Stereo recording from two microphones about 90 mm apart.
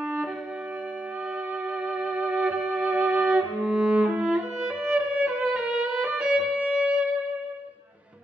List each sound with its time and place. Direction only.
1.9 s music: 15° right (ahead or behind)